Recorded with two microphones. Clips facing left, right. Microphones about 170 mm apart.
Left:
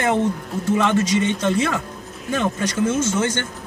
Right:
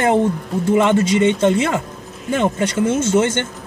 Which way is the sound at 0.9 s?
25° right (ahead or behind).